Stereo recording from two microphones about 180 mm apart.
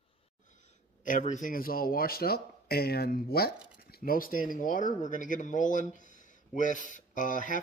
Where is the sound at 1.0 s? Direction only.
45° left (ahead or behind).